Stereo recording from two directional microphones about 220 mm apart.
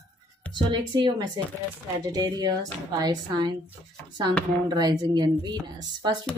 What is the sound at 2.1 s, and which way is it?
Speech, 15° right (ahead or behind).